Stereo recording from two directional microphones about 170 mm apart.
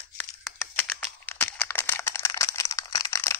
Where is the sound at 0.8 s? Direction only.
10° left (ahead or behind).